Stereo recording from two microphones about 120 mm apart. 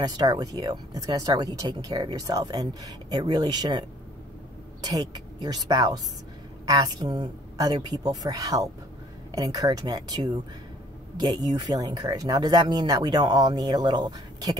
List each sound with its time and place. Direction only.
0.0 s speech: 30° right (ahead or behind)
4.8 s speech: 35° right (ahead or behind)